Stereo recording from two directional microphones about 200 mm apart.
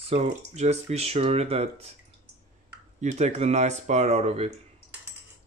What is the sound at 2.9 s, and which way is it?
Speech, 35° right (ahead or behind).